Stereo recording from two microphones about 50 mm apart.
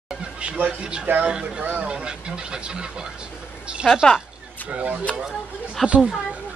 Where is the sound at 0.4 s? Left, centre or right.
Right.